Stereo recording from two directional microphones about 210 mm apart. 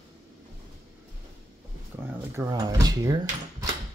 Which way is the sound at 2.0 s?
10° right (ahead or behind).